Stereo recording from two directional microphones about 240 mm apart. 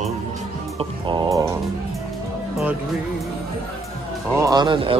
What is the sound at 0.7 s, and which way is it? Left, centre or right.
Speech, centre.